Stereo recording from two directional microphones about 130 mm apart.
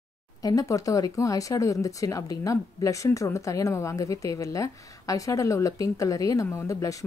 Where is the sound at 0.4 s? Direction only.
25° left (ahead or behind).